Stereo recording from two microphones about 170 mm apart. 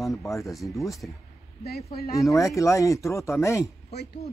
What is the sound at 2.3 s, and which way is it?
Speech, 20° left (ahead or behind).